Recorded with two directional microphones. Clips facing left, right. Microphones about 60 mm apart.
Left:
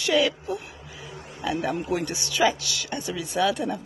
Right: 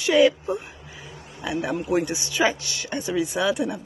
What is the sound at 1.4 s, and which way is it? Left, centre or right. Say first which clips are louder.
Speech: even; centre.